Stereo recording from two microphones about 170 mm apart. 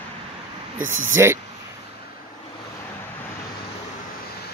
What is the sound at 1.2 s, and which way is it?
Speech, 15° right (ahead or behind).